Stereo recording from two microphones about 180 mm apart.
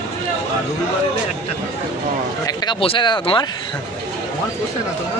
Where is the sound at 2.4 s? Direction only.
25° left (ahead or behind).